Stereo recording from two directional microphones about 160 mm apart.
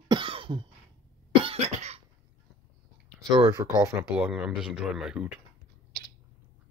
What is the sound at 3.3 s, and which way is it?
Speech, 25° right (ahead or behind).